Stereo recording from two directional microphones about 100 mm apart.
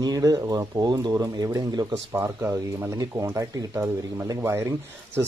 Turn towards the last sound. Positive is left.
turn(degrees=-25)  # may be behind; listen again after turning